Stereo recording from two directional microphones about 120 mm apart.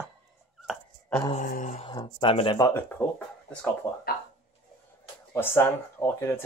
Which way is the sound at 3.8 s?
25° left (ahead or behind).